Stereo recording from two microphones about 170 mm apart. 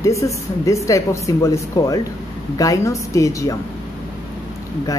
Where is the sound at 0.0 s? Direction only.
20° left (ahead or behind).